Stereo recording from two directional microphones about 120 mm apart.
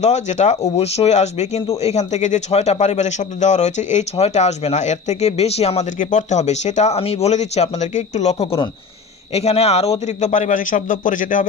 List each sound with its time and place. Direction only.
0.0 s a man's voice: 75° left (ahead or behind); by 11.4 s 90° left